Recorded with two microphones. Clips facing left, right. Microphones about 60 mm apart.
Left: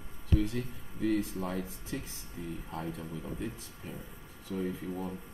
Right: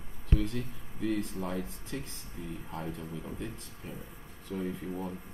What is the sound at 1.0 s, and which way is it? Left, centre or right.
Speech, centre.